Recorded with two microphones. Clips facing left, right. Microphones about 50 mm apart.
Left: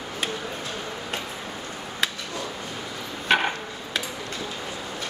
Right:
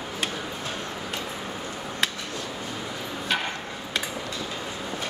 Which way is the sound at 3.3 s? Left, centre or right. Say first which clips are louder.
Left 6 dB; left.